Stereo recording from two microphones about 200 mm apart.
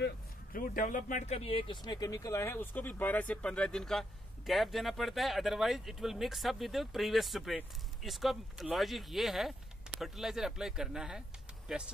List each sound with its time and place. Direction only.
0.0 s speech: 45° left (ahead or behind); by 11.9 s 5° right (ahead or behind)